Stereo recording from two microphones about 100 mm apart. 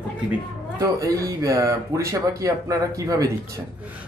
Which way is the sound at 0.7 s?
35° right (ahead or behind).